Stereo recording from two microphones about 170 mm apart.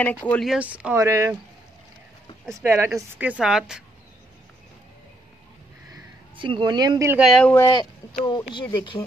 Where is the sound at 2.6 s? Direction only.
15° right (ahead or behind).